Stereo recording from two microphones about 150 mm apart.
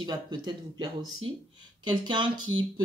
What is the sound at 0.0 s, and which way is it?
Speech, 30° right (ahead or behind).